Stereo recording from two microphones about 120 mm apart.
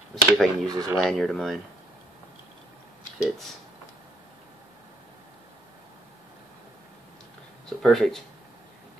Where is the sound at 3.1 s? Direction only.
5° right (ahead or behind).